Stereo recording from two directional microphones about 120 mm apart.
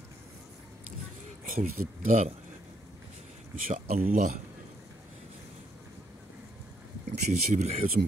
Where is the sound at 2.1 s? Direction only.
90° right.